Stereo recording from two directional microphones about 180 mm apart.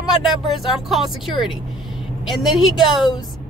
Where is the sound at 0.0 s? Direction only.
Centre (ahead or behind).